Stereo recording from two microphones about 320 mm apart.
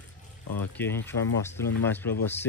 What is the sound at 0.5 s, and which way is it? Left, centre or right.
Speech, centre.